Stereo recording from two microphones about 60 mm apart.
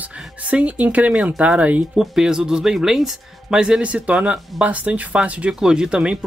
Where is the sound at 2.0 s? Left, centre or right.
Centre.